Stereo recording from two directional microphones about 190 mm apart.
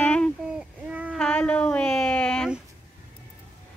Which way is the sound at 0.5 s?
5° right (ahead or behind).